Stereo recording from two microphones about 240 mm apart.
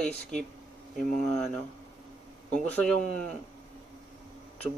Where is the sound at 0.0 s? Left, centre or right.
Centre.